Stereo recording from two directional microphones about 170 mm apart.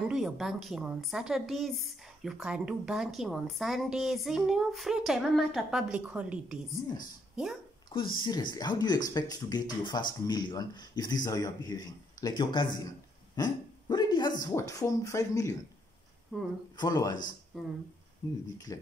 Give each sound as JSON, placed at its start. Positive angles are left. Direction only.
{"t": 0.1, "sound": "a woman's voice", "side_deg": 0}
{"t": 7.9, "sound": "speech", "side_deg": 30}
{"t": 16.3, "sound": "a woman's voice", "side_deg": -5}
{"t": 16.7, "sound": "speech", "side_deg": 20}
{"t": 18.2, "sound": "speech", "side_deg": 20}